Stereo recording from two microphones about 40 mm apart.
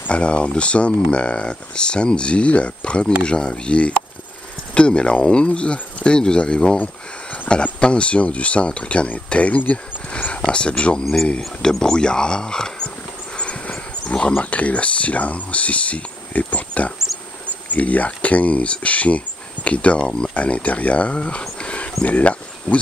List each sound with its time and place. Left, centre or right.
0.1 s speech: left
6.8 s a sound: left
7.8 s speech: left
10.3 s speech: left
13.4 s a sound: left
14.3 s speech: left
20.3 s speech: left